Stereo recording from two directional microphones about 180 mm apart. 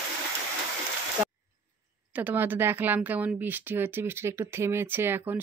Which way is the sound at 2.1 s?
10° right (ahead or behind).